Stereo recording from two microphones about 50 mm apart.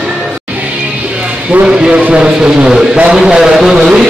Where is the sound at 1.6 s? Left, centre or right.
Centre.